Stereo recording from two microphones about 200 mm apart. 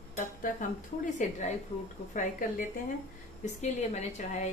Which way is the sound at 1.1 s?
35° left (ahead or behind).